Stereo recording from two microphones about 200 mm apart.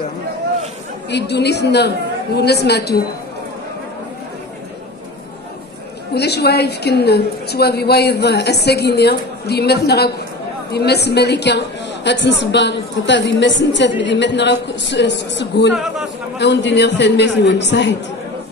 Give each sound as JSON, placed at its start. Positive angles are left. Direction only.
{"t": 1.1, "sound": "a woman's voice", "side_deg": 55}
{"t": 6.1, "sound": "a woman's voice", "side_deg": 55}
{"t": 15.7, "sound": "a man's voice", "side_deg": 0}
{"t": 16.3, "sound": "a woman's voice", "side_deg": 60}